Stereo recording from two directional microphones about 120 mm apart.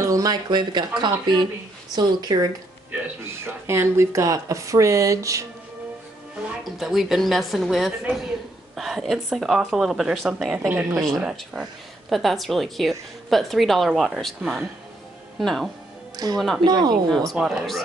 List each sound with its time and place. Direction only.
0.0 s speech: 30° right (ahead or behind)
3.4 s speech: 20° right (ahead or behind)
6.4 s a woman's voice: centre (ahead or behind)
10.7 s speech: 15° right (ahead or behind)
11.0 s a woman's voice: centre (ahead or behind)
16.6 s speech: 35° right (ahead or behind)
17.3 s a woman's voice: 5° right (ahead or behind)